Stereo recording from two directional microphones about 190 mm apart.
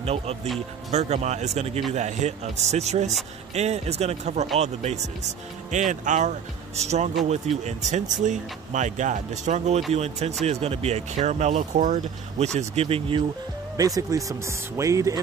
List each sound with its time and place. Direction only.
0.0 s speech: 30° right (ahead or behind)
13.7 s speech: 20° right (ahead or behind)